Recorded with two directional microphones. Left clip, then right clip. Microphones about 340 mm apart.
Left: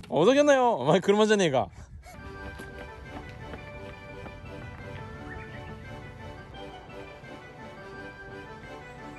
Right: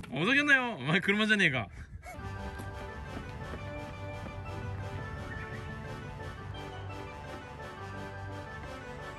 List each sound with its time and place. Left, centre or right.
0.1 s speech: centre